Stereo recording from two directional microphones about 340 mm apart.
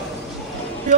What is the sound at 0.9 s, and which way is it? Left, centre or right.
Music, right.